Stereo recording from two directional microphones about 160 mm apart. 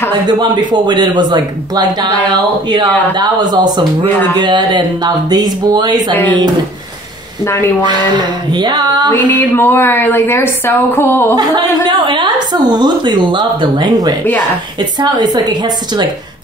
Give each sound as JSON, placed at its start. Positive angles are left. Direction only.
{"t": 0.3, "sound": "speech", "side_deg": -25}
{"t": 3.2, "sound": "speech", "side_deg": -25}
{"t": 7.8, "sound": "speech", "side_deg": -30}
{"t": 9.1, "sound": "a woman's voice", "side_deg": 10}
{"t": 11.3, "sound": "speech", "side_deg": -30}